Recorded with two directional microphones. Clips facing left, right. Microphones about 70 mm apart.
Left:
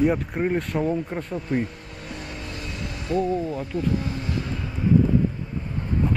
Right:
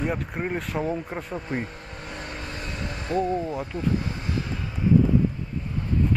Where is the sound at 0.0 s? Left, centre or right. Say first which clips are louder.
Left 6 dB; centre.